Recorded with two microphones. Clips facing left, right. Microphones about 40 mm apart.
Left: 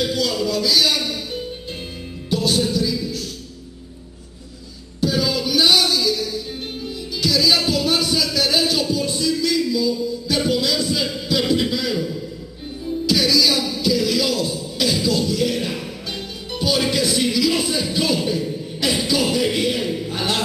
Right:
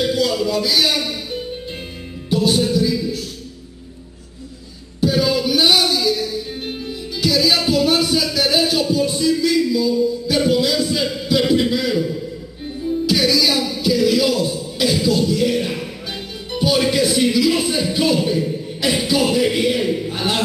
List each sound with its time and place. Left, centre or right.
0.0 s a sound: centre
0.6 s a man's voice: centre
2.2 s music: centre
5.0 s music: centre